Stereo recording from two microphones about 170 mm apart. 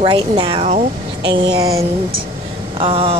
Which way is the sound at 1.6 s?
20° right (ahead or behind).